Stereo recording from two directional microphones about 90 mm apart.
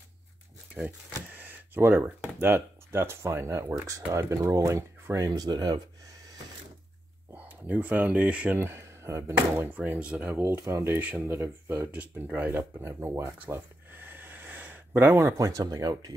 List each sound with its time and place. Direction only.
1.3 s a sound: 20° right (ahead or behind)
2.3 s speech: 25° right (ahead or behind); by 5.8 s 50° right (ahead or behind)
7.3 s speech: 15° right (ahead or behind)
9.8 s speech: 15° right (ahead or behind)
10.4 s speech: 35° right (ahead or behind)
11.8 s speech: 20° right (ahead or behind)
12.8 s a sound: 30° right (ahead or behind)
15.3 s speech: 40° right (ahead or behind)